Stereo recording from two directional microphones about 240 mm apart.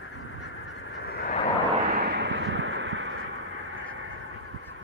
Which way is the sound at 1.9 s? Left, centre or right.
Right.